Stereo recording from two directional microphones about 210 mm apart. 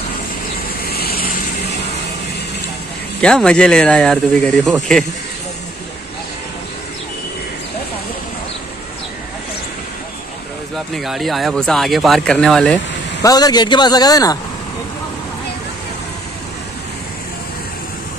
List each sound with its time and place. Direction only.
0.8 s vehicle: 45° left (ahead or behind)
3.2 s speech: 5° left (ahead or behind)
11.0 s speech: centre (ahead or behind)
13.2 s a man's voice: 20° left (ahead or behind)